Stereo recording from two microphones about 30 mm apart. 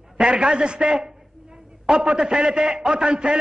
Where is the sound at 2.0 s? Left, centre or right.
Right.